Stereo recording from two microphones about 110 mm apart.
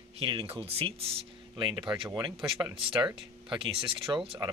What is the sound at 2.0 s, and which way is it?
Speech, 35° right (ahead or behind).